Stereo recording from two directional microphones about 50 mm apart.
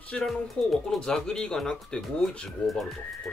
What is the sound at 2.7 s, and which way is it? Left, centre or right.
Speech, centre.